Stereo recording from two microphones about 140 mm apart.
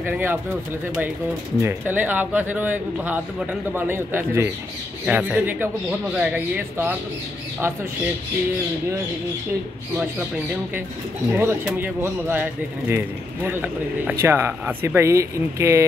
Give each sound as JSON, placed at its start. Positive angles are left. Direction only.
{"t": 0.0, "sound": "a man's voice", "side_deg": -15}
{"t": 1.6, "sound": "a man's voice", "side_deg": -15}
{"t": 11.3, "sound": "a man's voice", "side_deg": -15}